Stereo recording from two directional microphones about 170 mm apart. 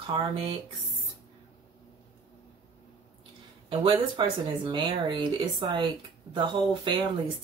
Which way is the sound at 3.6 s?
30° right (ahead or behind).